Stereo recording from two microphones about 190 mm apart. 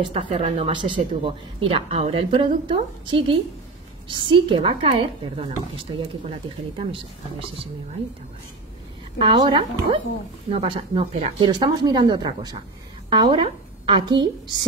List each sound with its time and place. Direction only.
0.0 s a woman's voice: 30° right (ahead or behind)
9.2 s a woman's voice: 25° right (ahead or behind)